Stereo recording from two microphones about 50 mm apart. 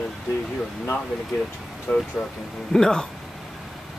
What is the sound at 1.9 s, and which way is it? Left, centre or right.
Speech, left.